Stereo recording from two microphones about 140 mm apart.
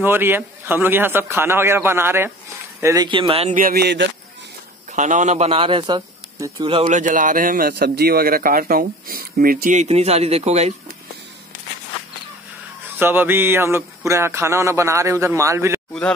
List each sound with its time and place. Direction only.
0.0 s a man's voice: 15° right (ahead or behind)
3.1 s speech: 40° right (ahead or behind)
3.5 s speech: 90° right
4.9 s a man's voice: 60° right (ahead or behind); by 6.0 s 35° right (ahead or behind)
6.9 s a man's voice: 65° right (ahead or behind)
13.0 s speech: 15° right (ahead or behind)